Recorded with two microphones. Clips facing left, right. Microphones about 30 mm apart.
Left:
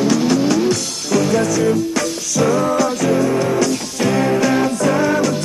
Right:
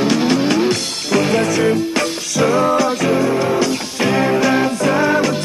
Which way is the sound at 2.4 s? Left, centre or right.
Right.